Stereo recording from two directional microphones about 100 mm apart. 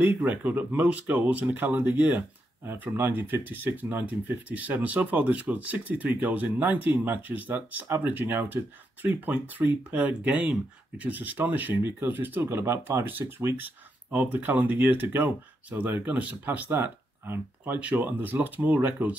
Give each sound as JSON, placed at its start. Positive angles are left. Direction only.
{"t": 0.0, "sound": "speech", "side_deg": -15}